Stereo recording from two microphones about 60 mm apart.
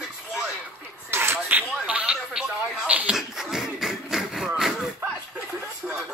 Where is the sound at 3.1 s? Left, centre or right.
Centre.